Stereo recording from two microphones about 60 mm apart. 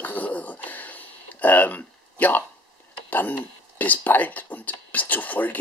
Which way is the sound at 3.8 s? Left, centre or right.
Left.